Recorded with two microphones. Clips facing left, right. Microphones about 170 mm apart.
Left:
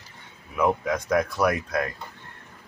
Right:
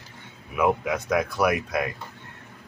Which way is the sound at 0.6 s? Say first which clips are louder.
Even; 10° right (ahead or behind).